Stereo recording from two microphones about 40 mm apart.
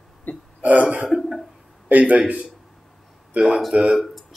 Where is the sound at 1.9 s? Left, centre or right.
Right.